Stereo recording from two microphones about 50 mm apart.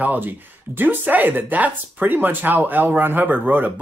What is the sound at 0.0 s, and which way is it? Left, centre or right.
Speech, right.